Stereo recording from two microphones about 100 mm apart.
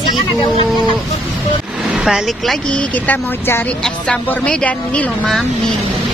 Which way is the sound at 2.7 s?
15° left (ahead or behind).